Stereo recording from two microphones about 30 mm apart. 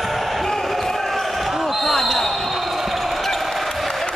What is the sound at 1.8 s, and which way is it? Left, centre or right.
Basketball bounce, centre.